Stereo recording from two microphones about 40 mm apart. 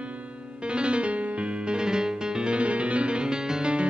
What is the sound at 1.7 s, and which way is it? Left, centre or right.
Music, centre.